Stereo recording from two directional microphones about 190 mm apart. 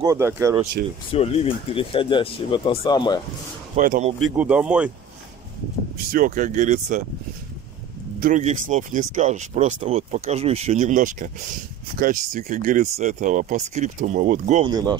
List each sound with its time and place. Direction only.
0.0 s speech: 15° right (ahead or behind)
1.1 s speech: 30° left (ahead or behind)
3.7 s speech: 45° right (ahead or behind)
4.4 s speech: 5° right (ahead or behind)
6.1 s speech: 45° right (ahead or behind)
8.2 s speech: 40° right (ahead or behind)
14.6 s speech: 20° right (ahead or behind)